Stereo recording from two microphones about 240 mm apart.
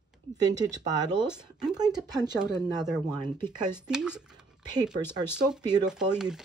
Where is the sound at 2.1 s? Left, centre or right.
Centre.